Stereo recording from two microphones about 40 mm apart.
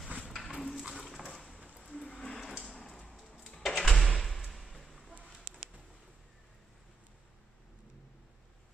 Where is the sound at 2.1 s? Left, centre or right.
Left.